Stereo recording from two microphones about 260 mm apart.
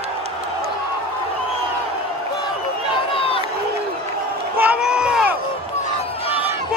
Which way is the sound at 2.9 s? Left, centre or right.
Left.